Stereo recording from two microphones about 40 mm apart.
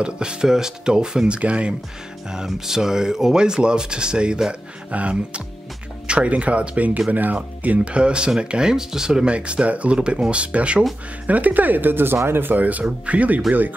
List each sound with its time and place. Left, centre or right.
0.0 s speech: right
2.3 s speech: centre; by 6.9 s right
7.1 s speech: right
7.9 s speech: right
9.3 s speech: right
9.9 s speech: right
11.2 s speech: right
12.5 s speech: right